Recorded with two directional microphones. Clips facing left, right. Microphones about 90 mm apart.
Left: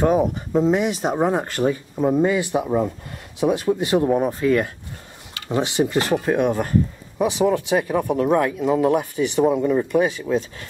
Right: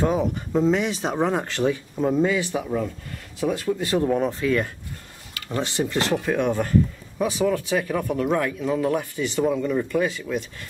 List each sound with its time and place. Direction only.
0.0 s speech: 10° left (ahead or behind)
5.3 s a sound: 20° left (ahead or behind)
5.8 s speech: 10° left (ahead or behind)
7.2 s speech: 20° left (ahead or behind)